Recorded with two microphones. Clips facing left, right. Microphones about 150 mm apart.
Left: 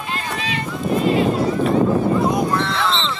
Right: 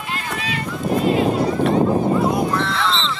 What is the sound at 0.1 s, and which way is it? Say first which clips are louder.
Run: even; 25° left (ahead or behind).